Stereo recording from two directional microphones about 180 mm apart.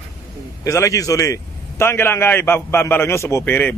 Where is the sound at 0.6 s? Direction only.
15° left (ahead or behind).